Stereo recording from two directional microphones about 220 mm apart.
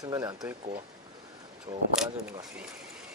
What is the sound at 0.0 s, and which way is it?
Speech, 20° right (ahead or behind).